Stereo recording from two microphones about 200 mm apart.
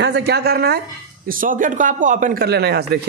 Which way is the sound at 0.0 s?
55° right (ahead or behind).